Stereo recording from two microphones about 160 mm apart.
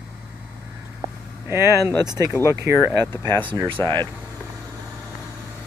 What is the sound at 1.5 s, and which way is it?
Speech, 15° right (ahead or behind).